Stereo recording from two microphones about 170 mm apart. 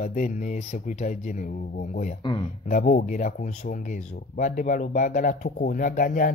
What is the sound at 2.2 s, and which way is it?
Speech, 30° left (ahead or behind).